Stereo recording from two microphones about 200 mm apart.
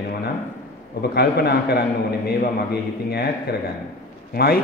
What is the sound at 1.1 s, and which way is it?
A man's voice, 55° left (ahead or behind).